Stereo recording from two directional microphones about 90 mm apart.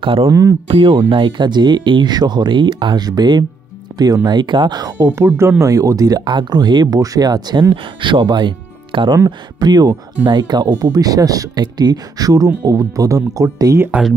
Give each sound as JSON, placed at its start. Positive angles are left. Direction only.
{"t": 0.0, "sound": "speech", "side_deg": -90}
{"t": 0.3, "sound": "speech", "side_deg": -35}
{"t": 0.7, "sound": "speech", "side_deg": -70}
{"t": 5.1, "sound": "speech", "side_deg": -30}
{"t": 6.2, "sound": "speech", "side_deg": -60}
{"t": 7.7, "sound": "speech", "side_deg": -70}
{"t": 9.6, "sound": "speech", "side_deg": -50}